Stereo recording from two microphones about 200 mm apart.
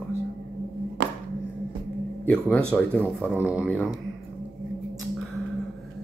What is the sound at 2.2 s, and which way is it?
Speech, 5° left (ahead or behind).